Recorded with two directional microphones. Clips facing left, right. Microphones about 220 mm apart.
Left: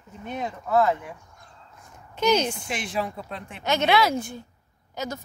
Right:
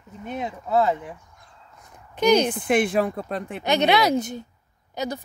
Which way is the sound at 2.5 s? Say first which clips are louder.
Right 10 dB; 55° right (ahead or behind).